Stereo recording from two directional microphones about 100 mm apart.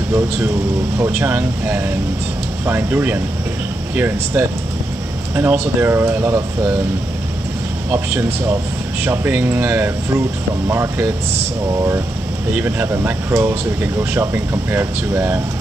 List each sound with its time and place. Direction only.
0.9 s speech: 20° right (ahead or behind)
7.9 s speech: 20° right (ahead or behind)
12.5 s speech: 20° right (ahead or behind)